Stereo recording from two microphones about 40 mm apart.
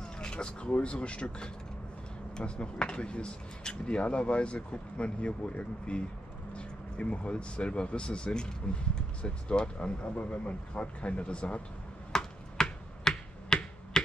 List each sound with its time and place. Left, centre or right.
0.0 s speech: left
12.1 s computer keyboard: centre